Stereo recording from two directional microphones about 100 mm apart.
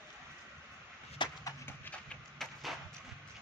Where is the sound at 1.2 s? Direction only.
50° left (ahead or behind).